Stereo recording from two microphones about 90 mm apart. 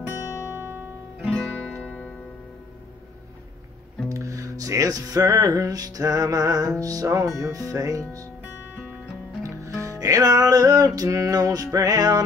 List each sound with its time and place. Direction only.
0.6 s music: 25° right (ahead or behind)
1.2 s music: 5° left (ahead or behind)
4.1 s music: 35° right (ahead or behind)
9.4 s music: 35° right (ahead or behind)